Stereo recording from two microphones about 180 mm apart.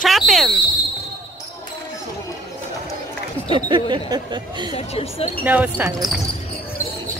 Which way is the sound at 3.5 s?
25° right (ahead or behind).